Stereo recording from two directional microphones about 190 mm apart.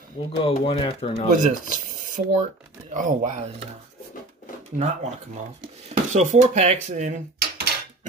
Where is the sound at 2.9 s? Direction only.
40° right (ahead or behind).